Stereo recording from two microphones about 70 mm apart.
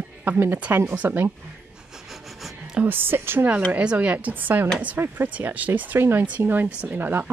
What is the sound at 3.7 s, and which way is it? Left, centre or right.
Speech, centre.